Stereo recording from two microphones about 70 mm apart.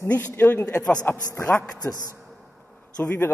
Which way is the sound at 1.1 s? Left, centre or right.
Left.